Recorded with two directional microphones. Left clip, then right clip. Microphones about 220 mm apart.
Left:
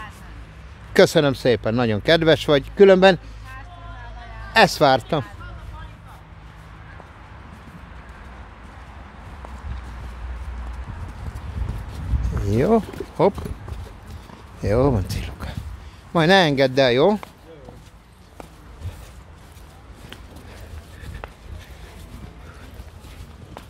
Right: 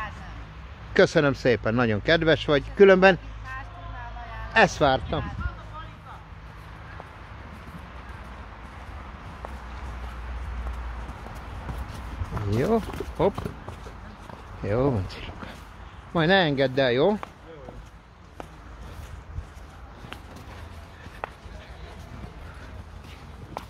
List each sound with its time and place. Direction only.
0.9 s speech: 25° left (ahead or behind)
4.6 s speech: 25° left (ahead or behind)
5.2 s speech: 45° left (ahead or behind)
12.5 s a sound: 30° left (ahead or behind)
14.6 s speech: 30° left (ahead or behind)